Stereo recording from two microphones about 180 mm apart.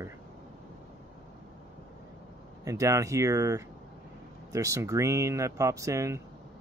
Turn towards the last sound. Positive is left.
turn(degrees=-15)  # may be behind; listen again after turning